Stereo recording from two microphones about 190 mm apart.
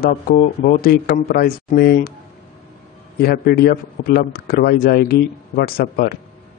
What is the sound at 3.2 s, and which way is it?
A man's voice, 55° left (ahead or behind).